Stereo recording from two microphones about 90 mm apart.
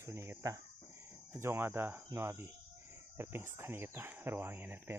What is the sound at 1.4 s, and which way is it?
Speech, 30° right (ahead or behind).